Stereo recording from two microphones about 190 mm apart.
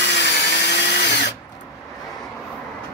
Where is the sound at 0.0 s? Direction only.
65° left (ahead or behind).